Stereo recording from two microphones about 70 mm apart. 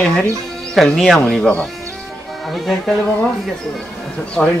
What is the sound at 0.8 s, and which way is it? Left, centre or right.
Speech, centre.